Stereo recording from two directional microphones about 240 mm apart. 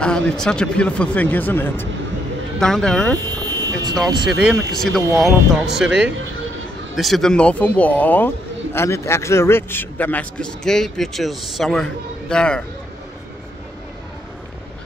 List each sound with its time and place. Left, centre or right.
0.0 s a man's voice: centre
3.3 s a sound: centre
4.3 s a man's voice: centre